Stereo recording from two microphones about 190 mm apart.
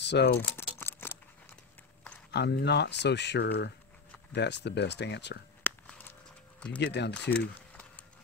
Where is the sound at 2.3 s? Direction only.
60° left (ahead or behind).